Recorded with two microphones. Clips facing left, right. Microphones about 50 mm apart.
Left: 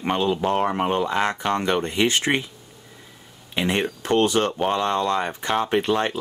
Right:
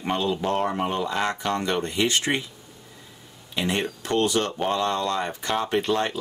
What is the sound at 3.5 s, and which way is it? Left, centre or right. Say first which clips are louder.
Speech: left 3 dB; left.